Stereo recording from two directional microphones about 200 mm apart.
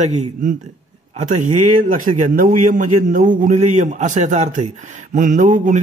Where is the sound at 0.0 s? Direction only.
35° right (ahead or behind).